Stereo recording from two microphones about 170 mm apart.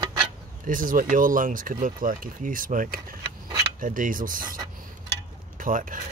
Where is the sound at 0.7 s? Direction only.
55° right (ahead or behind).